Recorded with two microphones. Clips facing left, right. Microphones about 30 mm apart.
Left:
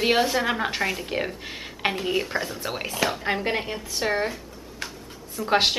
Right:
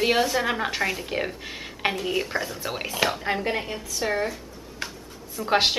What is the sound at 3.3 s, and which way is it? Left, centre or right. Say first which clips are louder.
Speech: left 1 dB; centre.